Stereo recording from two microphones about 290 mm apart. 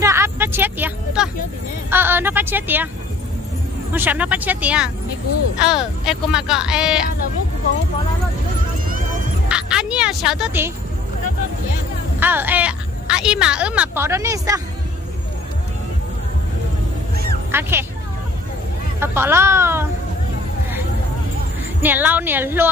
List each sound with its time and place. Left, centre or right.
0.0 s vehicle: centre
1.9 s speech: centre
3.9 s speech: centre
8.8 s vehicle: right
9.5 s music: centre
12.2 s speech: centre
17.5 s speech: centre
18.9 s a woman's voice: centre
21.8 s a woman's voice: centre